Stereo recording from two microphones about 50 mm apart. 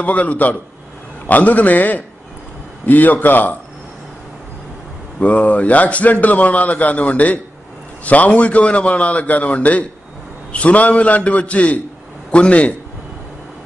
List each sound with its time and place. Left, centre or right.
0.0 s a man's voice: left
5.2 s a man's voice: left